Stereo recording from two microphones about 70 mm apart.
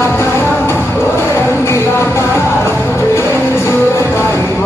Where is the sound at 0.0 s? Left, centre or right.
Left.